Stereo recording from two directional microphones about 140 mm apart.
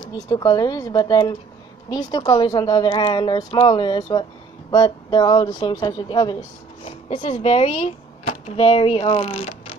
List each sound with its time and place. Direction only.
0.0 s speech: 30° left (ahead or behind); by 9.8 s 50° left (ahead or behind)